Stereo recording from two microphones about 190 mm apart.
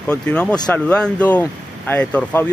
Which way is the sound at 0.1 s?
5° left (ahead or behind).